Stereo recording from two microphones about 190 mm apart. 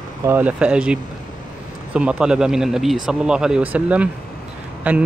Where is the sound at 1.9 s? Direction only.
5° right (ahead or behind).